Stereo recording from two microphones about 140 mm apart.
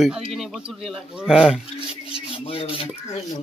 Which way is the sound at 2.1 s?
40° left (ahead or behind).